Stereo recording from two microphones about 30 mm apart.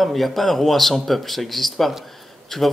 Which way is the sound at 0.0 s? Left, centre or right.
Centre.